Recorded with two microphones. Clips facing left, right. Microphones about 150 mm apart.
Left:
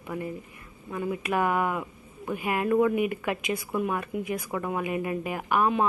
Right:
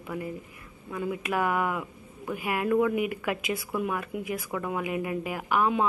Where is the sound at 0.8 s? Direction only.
15° left (ahead or behind).